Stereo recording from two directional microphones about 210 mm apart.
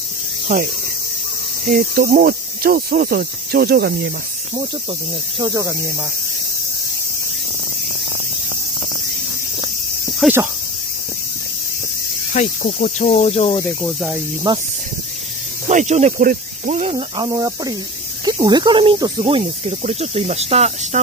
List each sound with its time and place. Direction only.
0.5 s speech: 35° right (ahead or behind)
1.7 s cricket: 40° right (ahead or behind)
5.4 s speech: 15° right (ahead or behind)
10.2 s speech: 10° right (ahead or behind)
12.3 s cricket: 35° left (ahead or behind)
14.5 s speech: 20° right (ahead or behind)
15.7 s speech: 35° right (ahead or behind)